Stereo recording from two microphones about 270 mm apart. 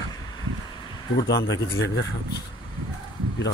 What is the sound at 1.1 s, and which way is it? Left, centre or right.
Speech, left.